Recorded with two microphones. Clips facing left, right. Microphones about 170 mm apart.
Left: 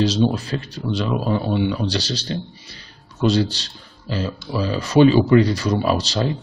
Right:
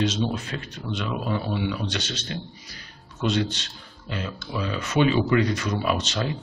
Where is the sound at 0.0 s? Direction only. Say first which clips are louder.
Left 6 dB; 35° left (ahead or behind).